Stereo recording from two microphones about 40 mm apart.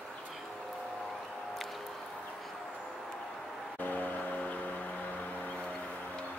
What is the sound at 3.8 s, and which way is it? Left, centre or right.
Vehicle, left.